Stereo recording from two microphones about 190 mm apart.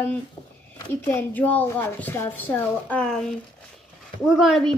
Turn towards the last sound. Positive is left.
turn(degrees=0)  # may be behind; listen again after turning